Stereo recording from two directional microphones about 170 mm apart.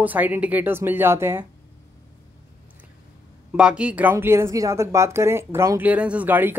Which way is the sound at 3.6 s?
5° right (ahead or behind).